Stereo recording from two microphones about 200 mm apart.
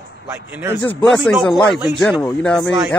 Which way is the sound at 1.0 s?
Centre (ahead or behind).